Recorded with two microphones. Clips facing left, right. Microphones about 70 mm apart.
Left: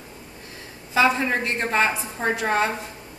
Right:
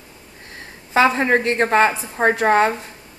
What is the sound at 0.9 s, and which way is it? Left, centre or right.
A woman's voice, right.